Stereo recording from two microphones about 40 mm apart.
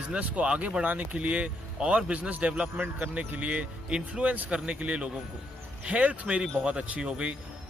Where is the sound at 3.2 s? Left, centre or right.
Right.